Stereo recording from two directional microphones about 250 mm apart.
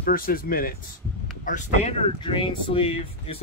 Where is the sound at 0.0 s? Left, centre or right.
Left.